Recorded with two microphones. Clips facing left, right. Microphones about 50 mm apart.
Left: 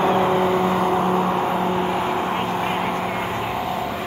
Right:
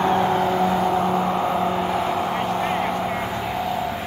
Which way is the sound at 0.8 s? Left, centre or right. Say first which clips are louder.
Left 1 dB; left.